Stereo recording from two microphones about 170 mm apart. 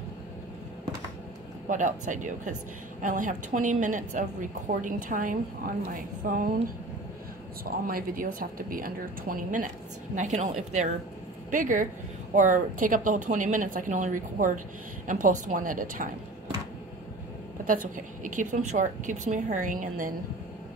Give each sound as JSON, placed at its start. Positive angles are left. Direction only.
{"t": 1.7, "sound": "a woman's voice", "side_deg": -50}
{"t": 7.6, "sound": "a woman's voice", "side_deg": -60}
{"t": 17.6, "sound": "a woman's voice", "side_deg": -50}